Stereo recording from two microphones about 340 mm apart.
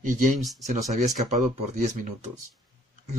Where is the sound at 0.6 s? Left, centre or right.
Right.